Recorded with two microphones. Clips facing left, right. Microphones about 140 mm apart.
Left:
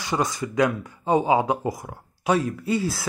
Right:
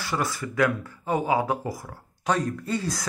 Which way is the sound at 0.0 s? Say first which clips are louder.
Left 3 dB; 20° left (ahead or behind).